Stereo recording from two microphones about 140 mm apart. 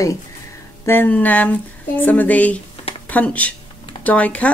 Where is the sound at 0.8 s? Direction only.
15° left (ahead or behind).